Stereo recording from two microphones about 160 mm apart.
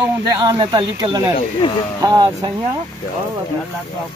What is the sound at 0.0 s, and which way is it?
Speech, 25° right (ahead or behind).